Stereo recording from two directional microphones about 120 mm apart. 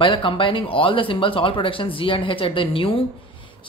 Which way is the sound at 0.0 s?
45° left (ahead or behind).